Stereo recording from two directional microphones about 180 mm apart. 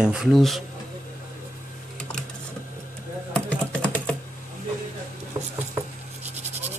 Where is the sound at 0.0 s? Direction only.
5° right (ahead or behind).